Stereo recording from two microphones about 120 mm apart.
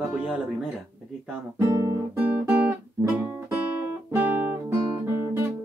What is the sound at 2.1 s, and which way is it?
Guitar, 15° right (ahead or behind).